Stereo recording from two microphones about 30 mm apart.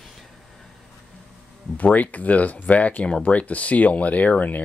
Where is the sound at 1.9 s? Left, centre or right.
Left.